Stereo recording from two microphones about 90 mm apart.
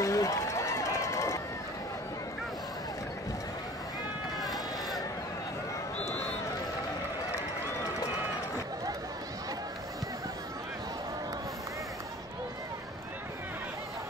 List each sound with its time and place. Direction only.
0.0 s run: 35° left (ahead or behind)
4.4 s run: centre (ahead or behind)